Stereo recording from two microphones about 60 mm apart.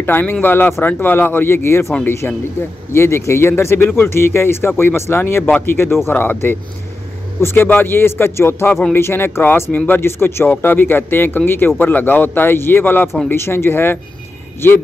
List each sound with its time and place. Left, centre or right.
0.0 s speech: left